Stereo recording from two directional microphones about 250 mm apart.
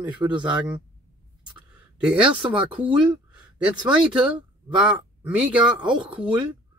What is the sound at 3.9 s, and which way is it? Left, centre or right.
Speech, centre.